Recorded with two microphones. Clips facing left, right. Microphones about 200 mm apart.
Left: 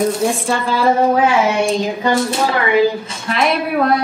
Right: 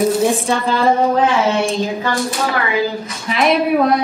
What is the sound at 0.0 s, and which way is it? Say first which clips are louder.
Speech: right 2 dB; centre (ahead or behind).